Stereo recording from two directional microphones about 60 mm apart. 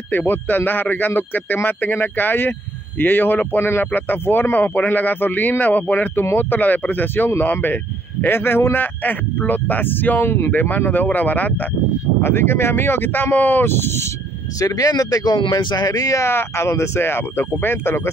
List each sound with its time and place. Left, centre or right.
0.1 s speech: left
12.2 s speech: left
14.6 s speech: left
16.2 s speech: left